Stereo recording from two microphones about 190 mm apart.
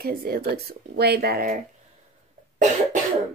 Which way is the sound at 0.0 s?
50° right (ahead or behind).